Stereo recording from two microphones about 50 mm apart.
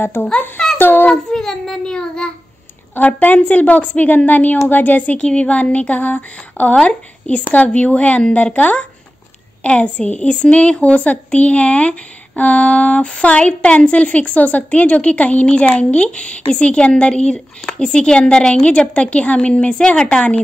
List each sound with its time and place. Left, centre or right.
0.7 s a sound: left
1.1 s child singing: centre
3.1 s a woman's voice: left
6.7 s a woman's voice: centre